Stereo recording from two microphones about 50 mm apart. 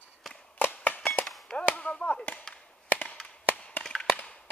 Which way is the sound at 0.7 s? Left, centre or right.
Left.